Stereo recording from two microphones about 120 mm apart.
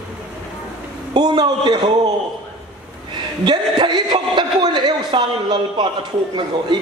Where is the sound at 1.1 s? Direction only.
35° right (ahead or behind).